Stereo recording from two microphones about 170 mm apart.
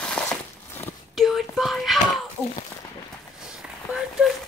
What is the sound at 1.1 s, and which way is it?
Whispering, centre (ahead or behind).